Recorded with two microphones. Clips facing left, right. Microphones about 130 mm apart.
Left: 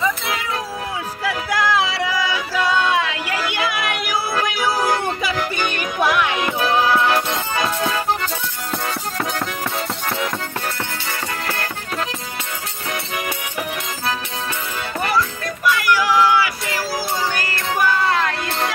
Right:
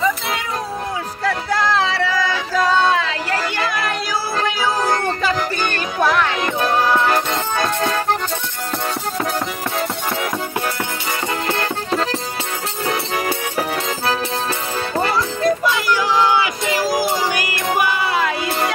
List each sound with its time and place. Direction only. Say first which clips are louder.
1.2 s music: right 2 dB; 10° left (ahead or behind)
11.4 s music: right 5 dB; 30° right (ahead or behind); by 18.7 s 5° right (ahead or behind)